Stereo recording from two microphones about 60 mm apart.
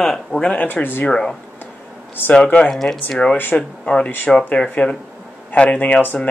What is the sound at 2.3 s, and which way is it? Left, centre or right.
Speech, centre.